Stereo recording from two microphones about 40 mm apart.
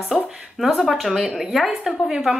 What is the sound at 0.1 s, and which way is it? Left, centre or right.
A woman's voice, centre.